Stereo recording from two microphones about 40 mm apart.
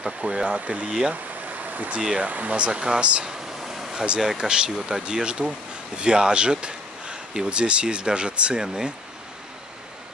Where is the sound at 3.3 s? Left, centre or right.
Centre.